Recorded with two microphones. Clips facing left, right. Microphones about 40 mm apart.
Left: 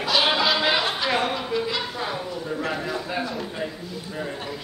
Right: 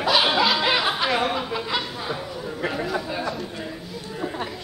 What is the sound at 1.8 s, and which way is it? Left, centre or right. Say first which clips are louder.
A man's voice: left 1 dB; centre.